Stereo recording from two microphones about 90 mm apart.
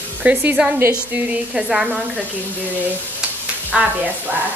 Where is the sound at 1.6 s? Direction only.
5° right (ahead or behind).